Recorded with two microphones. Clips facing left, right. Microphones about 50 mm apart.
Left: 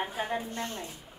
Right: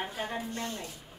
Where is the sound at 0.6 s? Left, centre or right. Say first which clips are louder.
Left 1 dB; left.